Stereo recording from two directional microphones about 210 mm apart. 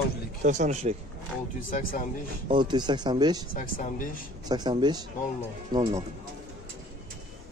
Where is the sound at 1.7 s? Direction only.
40° left (ahead or behind).